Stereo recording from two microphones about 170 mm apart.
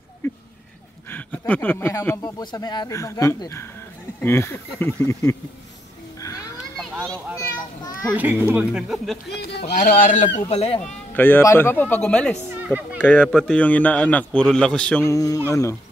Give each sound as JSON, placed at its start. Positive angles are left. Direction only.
{"t": 0.2, "sound": "a sound", "side_deg": 15}
{"t": 1.1, "sound": "speech", "side_deg": 10}
{"t": 6.2, "sound": "children playing", "side_deg": 20}
{"t": 8.1, "sound": "speech", "side_deg": -10}
{"t": 9.3, "sound": "speech", "side_deg": 70}
{"t": 9.8, "sound": "speech", "side_deg": 50}
{"t": 10.5, "sound": "speech", "side_deg": 35}
{"t": 11.1, "sound": "speech", "side_deg": 10}
{"t": 12.6, "sound": "a sound", "side_deg": -10}
{"t": 13.0, "sound": "speech", "side_deg": 10}